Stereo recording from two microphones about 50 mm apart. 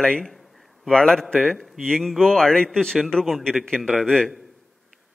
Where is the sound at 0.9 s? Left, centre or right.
Centre.